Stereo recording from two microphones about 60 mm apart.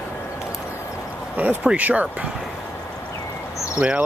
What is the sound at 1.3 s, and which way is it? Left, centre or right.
Speech, right.